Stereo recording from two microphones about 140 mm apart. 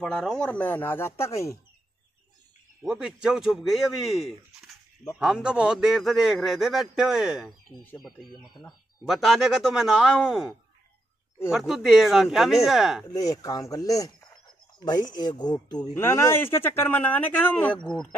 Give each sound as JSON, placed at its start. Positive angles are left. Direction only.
{"t": 0.0, "sound": "speech", "side_deg": 0}
{"t": 2.8, "sound": "speech", "side_deg": -5}
{"t": 11.5, "sound": "speech", "side_deg": 0}
{"t": 13.3, "sound": "speech", "side_deg": 25}
{"t": 15.9, "sound": "speech", "side_deg": 20}